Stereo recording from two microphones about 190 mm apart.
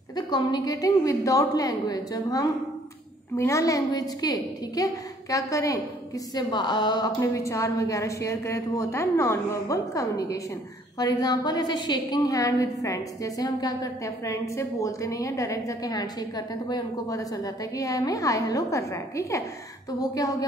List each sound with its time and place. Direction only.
0.1 s a woman's voice: 20° left (ahead or behind)